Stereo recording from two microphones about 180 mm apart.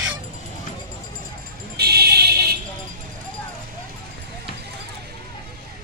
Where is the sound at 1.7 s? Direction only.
60° right (ahead or behind).